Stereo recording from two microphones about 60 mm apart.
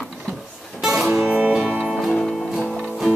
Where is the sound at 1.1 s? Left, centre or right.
Right.